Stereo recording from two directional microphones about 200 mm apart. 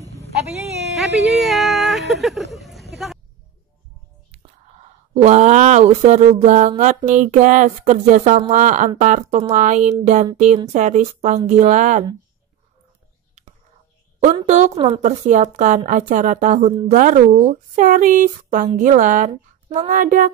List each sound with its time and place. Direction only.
0.9 s a sound: centre (ahead or behind)
2.2 s speech: centre (ahead or behind)
5.1 s speech: 35° right (ahead or behind)
14.2 s speech: 35° right (ahead or behind)